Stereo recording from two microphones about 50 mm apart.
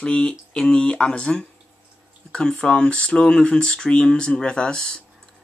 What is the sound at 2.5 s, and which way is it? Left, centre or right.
Speech, left.